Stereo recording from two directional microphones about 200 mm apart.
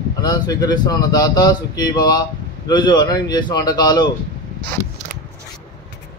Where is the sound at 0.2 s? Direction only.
20° left (ahead or behind).